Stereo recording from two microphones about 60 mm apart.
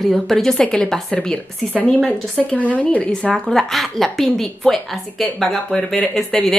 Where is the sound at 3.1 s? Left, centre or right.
Centre.